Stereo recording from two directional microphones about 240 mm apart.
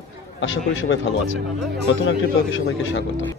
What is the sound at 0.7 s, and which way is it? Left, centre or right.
Speech, left.